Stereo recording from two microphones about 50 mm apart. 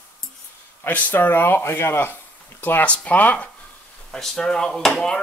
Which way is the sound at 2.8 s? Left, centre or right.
Left.